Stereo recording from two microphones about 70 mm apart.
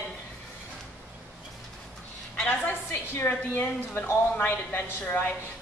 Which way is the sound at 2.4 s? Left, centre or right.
Left.